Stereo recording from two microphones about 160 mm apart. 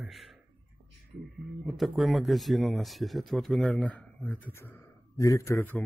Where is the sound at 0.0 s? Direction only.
Centre (ahead or behind).